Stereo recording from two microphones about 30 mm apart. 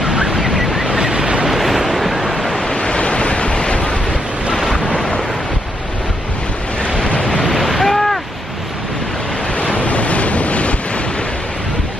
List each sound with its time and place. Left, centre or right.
0.0 s vehicle: centre
0.4 s a sound: centre
1.1 s vehicle: right
1.6 s waves: centre
2.7 s waves: left
4.6 s waves: centre
7.5 s waves: centre
9.8 s waves: left